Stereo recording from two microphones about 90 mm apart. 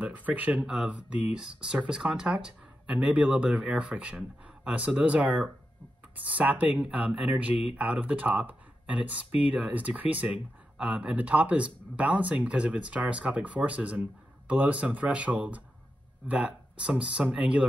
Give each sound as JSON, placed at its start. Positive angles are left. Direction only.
{"t": 0.0, "sound": "speech", "side_deg": -15}